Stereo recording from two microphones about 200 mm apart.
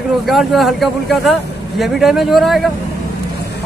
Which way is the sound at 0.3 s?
Centre (ahead or behind).